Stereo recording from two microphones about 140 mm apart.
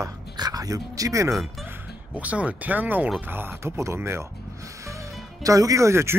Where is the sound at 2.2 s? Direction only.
10° right (ahead or behind).